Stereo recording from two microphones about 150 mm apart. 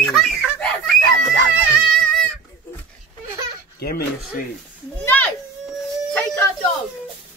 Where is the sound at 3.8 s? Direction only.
85° left.